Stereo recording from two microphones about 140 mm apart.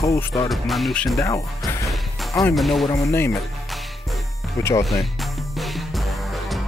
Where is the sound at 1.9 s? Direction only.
Centre (ahead or behind).